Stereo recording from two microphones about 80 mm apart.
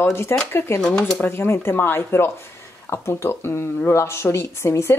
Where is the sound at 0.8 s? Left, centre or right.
Centre.